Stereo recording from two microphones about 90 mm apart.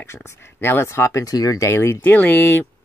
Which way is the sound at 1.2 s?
45° left (ahead or behind).